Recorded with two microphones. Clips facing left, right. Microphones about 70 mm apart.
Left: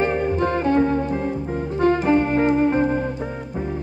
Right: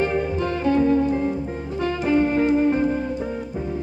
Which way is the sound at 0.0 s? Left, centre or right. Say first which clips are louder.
Left 2 dB; left.